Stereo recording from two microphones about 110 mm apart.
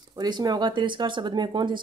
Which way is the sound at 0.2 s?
35° right (ahead or behind).